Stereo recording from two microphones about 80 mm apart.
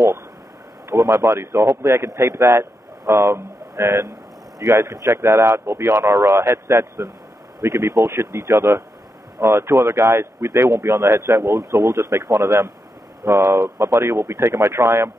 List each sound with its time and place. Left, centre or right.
0.8 s speech: right